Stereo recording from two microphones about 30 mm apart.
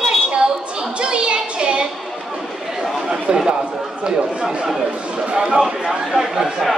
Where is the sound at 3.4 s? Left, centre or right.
Right.